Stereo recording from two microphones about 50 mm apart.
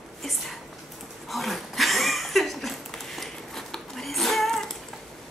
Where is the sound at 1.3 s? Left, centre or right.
Centre.